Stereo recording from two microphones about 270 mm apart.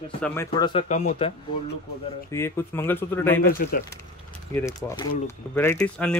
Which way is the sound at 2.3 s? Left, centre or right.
Centre.